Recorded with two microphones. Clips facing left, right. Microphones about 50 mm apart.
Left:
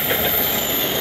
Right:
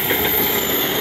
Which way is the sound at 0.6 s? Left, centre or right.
Right.